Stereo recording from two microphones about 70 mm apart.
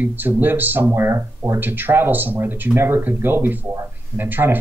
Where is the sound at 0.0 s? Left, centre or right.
Right.